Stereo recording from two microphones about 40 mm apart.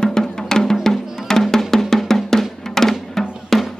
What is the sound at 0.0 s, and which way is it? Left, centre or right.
Music, centre.